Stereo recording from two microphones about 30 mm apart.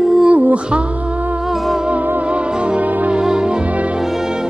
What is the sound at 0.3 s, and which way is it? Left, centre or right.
Music, right.